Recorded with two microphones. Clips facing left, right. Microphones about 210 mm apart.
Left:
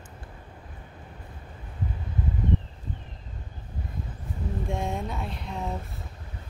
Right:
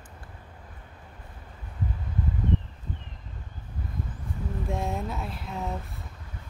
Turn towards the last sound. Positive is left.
turn(degrees=-5)  # may be behind; listen again after turning